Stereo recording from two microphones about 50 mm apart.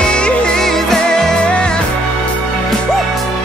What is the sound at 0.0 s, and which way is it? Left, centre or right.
Music, centre.